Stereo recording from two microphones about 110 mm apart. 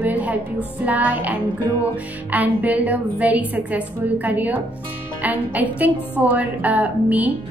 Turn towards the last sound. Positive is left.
turn(degrees=-15)  # may be behind; listen again after turning